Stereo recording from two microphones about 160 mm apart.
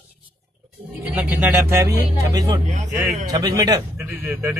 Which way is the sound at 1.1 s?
15° right (ahead or behind).